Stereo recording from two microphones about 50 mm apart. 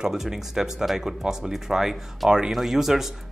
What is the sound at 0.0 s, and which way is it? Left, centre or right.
Speech, centre.